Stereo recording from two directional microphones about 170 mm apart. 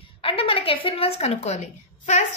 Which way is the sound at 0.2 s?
30° left (ahead or behind).